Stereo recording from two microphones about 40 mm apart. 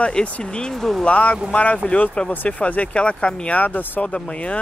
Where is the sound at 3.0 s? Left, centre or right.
Left.